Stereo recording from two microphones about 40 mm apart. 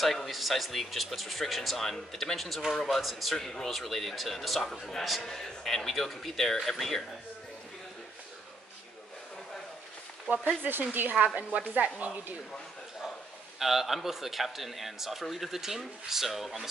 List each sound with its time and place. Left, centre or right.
0.0 s speech: centre
3.3 s speech: centre
10.6 s a woman's voice: right
13.6 s speech: centre